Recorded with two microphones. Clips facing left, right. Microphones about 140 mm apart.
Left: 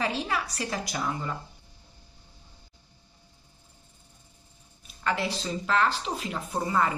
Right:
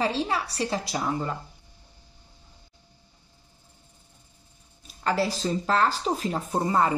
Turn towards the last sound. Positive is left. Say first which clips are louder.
# right 3 dB
turn(degrees=-35)  # may be behind; listen again after turning